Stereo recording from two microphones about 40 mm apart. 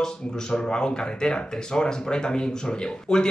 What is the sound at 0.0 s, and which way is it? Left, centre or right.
A man's voice, centre.